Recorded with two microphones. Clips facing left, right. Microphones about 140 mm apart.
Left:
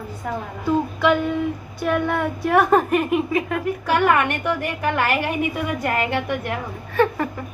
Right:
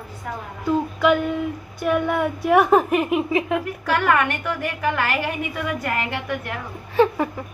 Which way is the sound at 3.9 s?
20° left (ahead or behind).